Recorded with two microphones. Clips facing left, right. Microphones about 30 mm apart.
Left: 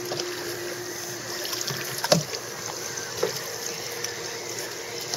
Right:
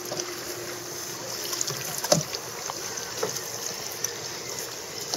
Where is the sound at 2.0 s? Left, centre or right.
Left.